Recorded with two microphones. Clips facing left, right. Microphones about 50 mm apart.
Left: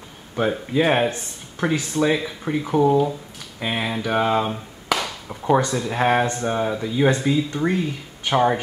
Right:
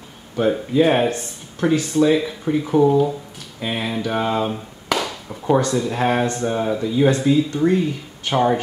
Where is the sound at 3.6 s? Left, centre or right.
Centre.